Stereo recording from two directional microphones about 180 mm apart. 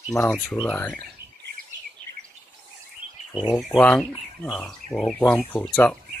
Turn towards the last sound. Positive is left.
turn(degrees=5)  # may be behind; listen again after turning